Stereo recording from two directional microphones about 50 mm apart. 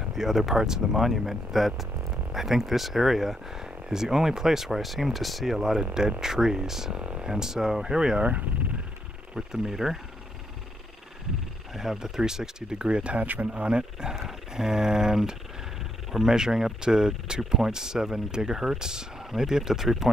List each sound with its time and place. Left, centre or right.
0.0 s speech: centre
7.0 s speech: right
7.3 s speech: centre
8.2 s speech: right
9.3 s speech: centre
11.7 s speech: centre